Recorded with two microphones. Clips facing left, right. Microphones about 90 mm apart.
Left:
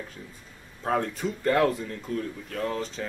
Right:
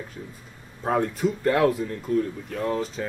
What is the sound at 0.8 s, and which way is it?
Speech, 5° right (ahead or behind).